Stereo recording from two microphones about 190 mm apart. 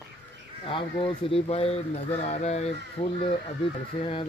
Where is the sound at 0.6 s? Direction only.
25° left (ahead or behind).